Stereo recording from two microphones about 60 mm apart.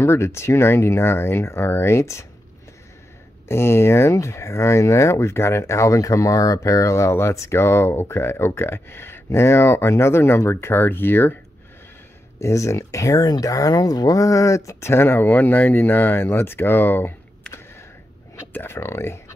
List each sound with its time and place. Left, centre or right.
0.0 s speech: left
3.4 s speech: left
12.4 s speech: left
18.5 s speech: left